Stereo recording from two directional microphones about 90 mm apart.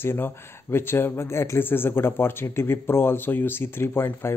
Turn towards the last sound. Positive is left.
turn(degrees=25)  # may be behind; listen again after turning